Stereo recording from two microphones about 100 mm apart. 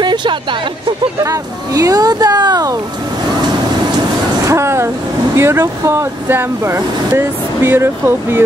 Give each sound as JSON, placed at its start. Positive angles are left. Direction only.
{"t": 0.0, "sound": "speech", "side_deg": -50}
{"t": 1.2, "sound": "speech", "side_deg": -35}
{"t": 4.5, "sound": "speech", "side_deg": -30}